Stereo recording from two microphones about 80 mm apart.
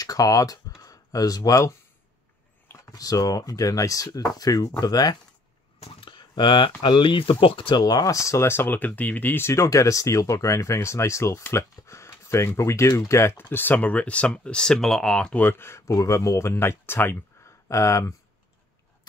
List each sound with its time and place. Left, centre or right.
0.0 s speech: left
2.9 s speech: left
5.9 s speech: left
7.8 s speech: left
9.5 s speech: left; by 15.4 s centre
15.4 s speech: left